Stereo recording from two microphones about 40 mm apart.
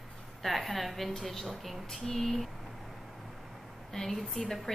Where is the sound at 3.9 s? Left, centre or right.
Centre.